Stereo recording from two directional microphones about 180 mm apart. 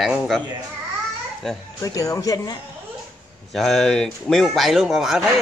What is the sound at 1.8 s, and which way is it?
Speech, 20° left (ahead or behind).